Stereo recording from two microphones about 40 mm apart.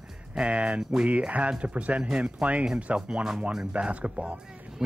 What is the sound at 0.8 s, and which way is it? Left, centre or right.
Speech, centre.